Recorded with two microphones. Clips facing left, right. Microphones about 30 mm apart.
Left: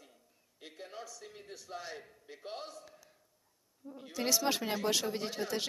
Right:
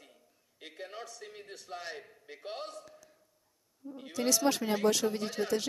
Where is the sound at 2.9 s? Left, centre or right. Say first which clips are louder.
Right 3 dB; centre.